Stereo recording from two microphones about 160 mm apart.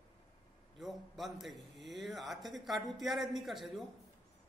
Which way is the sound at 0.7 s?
Centre (ahead or behind).